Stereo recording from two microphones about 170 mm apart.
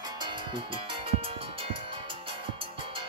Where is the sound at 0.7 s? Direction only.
30° right (ahead or behind).